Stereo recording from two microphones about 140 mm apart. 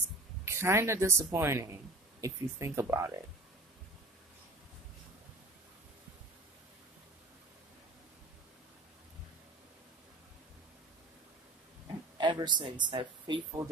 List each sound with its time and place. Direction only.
0.5 s a woman's voice: 20° right (ahead or behind)
12.2 s speech: 35° right (ahead or behind)